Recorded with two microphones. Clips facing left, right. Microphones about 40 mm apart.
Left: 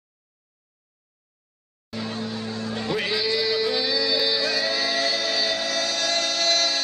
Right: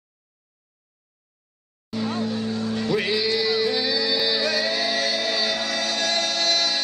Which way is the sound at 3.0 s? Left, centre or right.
Centre.